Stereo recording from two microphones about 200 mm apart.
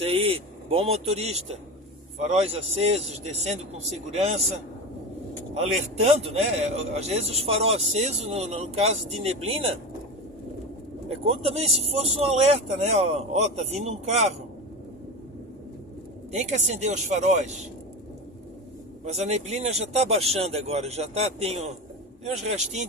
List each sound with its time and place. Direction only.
0.0 s speech: 30° right (ahead or behind)
5.5 s speech: 35° right (ahead or behind)
11.1 s speech: 30° right (ahead or behind)
16.3 s speech: 35° right (ahead or behind)
19.0 s speech: 30° right (ahead or behind)